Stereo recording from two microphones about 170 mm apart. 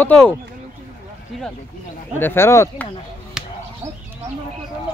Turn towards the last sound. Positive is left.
turn(degrees=-5)  # may be behind; listen again after turning